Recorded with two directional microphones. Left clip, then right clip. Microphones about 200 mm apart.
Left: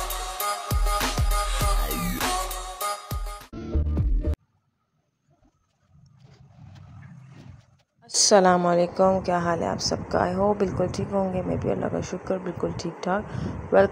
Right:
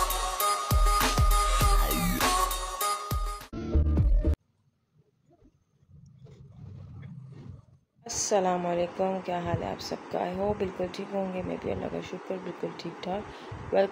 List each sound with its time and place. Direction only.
0.1 s music: centre (ahead or behind)
8.2 s speech: 45° left (ahead or behind)